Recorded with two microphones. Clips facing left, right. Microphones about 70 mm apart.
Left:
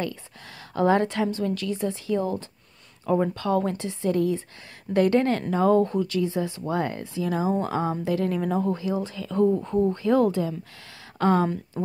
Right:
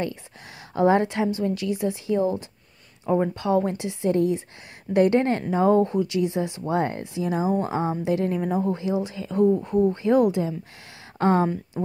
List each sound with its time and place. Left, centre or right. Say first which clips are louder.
0.7 s a woman's voice: right 2 dB; centre
8.4 s a woman's voice: right 1 dB; centre
11.4 s a woman's voice: right 1 dB; centre